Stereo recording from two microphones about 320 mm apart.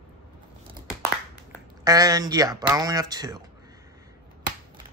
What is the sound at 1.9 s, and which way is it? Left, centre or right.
Speech, centre.